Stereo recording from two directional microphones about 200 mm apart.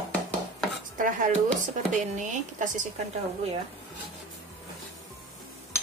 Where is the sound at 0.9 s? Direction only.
40° right (ahead or behind).